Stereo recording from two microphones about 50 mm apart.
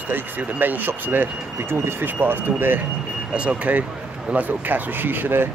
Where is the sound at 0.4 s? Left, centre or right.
Right.